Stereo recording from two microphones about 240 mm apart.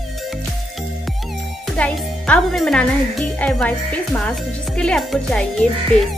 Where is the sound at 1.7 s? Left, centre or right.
Centre.